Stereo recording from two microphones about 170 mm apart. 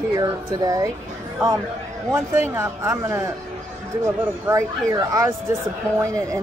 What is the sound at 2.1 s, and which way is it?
Speech, 15° right (ahead or behind).